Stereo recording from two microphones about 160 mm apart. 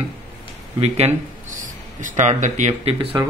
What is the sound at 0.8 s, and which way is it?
Speech, 40° right (ahead or behind).